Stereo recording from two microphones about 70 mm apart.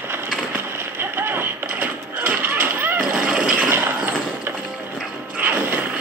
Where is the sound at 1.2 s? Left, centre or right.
Right.